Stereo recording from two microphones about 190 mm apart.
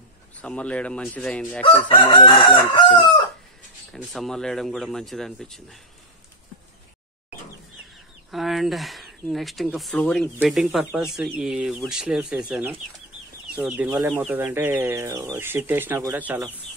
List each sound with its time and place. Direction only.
0.4 s speech: 5° left (ahead or behind)
1.7 s chicken: 30° left (ahead or behind)
3.9 s speech: centre (ahead or behind)
8.3 s speech: centre (ahead or behind)